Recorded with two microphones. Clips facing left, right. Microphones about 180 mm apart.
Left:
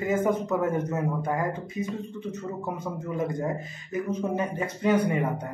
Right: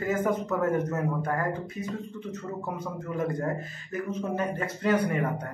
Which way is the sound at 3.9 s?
10° left (ahead or behind).